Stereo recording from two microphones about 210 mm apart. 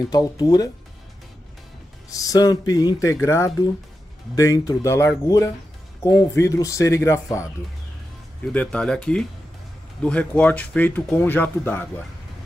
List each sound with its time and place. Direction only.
0.1 s speech: 20° left (ahead or behind)
2.0 s speech: 15° left (ahead or behind)
8.5 s speech: 5° left (ahead or behind)